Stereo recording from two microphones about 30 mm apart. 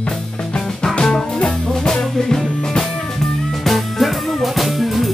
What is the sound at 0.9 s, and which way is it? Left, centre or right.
Music, left.